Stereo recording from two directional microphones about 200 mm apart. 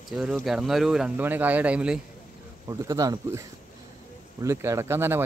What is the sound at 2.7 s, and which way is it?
Speech, 15° right (ahead or behind).